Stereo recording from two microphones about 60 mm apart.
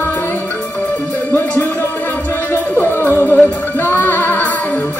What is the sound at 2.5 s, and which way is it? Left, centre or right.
Music, left.